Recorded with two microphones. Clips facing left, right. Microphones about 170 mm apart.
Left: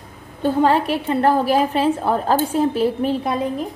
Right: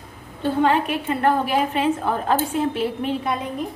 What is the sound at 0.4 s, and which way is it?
Speech, 35° left (ahead or behind).